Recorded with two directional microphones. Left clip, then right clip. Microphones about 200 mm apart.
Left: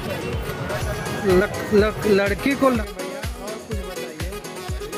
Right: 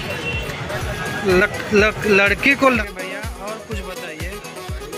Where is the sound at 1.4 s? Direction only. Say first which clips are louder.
Right 3 dB; 10° left (ahead or behind).